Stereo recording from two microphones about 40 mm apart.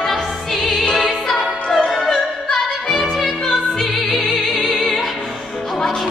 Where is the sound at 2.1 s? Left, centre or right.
Centre.